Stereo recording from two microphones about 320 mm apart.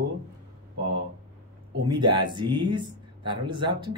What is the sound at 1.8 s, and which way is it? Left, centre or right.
Speech, centre.